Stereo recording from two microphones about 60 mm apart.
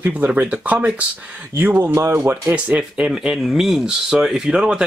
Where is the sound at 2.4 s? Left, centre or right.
Right.